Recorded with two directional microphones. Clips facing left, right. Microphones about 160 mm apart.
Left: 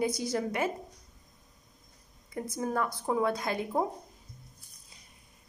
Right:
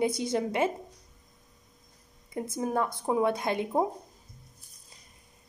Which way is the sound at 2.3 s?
20° right (ahead or behind).